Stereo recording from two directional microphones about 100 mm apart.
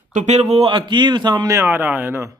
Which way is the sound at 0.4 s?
90° right.